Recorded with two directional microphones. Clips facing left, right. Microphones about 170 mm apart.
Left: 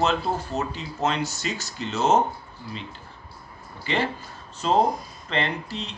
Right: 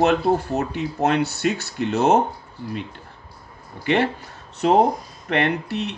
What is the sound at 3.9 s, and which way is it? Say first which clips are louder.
Speech: right 6 dB; 60° right (ahead or behind).